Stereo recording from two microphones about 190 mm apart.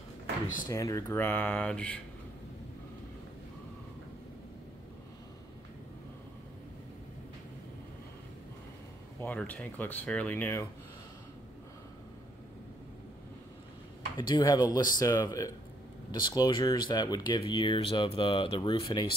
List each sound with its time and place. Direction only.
0.7 s speech: 15° left (ahead or behind)
9.2 s speech: 10° left (ahead or behind)
14.1 s speech: 20° left (ahead or behind)